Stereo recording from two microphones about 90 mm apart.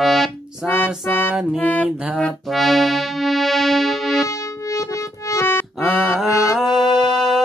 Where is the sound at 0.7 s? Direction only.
20° left (ahead or behind).